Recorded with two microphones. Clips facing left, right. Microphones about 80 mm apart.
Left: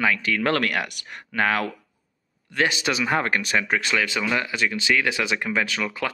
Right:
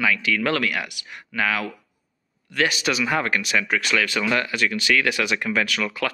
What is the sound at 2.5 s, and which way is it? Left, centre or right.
Speech, left.